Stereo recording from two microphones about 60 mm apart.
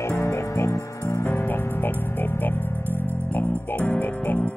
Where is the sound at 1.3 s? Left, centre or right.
Left.